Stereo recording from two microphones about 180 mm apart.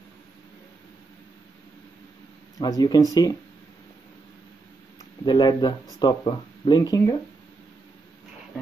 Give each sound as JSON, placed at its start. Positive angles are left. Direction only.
{"t": 2.6, "sound": "speech", "side_deg": 20}
{"t": 5.2, "sound": "speech", "side_deg": 25}